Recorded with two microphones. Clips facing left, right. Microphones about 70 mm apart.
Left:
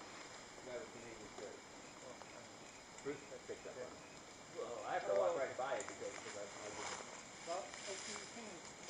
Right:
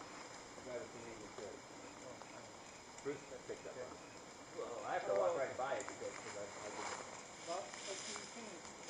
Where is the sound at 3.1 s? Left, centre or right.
Centre.